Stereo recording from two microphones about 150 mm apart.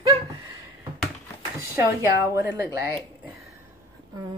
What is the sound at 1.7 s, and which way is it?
Speech, 15° right (ahead or behind).